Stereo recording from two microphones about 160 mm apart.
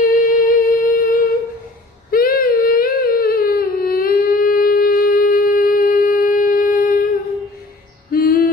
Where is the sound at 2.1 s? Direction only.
65° left (ahead or behind).